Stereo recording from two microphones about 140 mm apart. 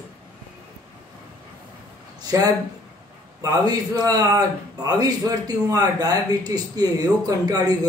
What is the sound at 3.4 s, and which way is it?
Speech, 30° right (ahead or behind).